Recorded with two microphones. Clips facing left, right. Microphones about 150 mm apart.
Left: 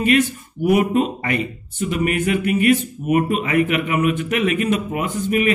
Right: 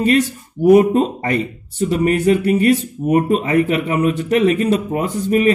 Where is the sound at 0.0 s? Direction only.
30° right (ahead or behind).